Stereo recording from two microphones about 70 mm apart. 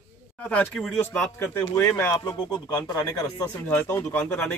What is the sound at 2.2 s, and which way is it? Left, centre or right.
Speech, left.